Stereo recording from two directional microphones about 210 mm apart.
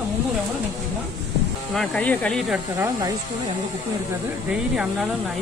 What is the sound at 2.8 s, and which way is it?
Speech, 15° right (ahead or behind).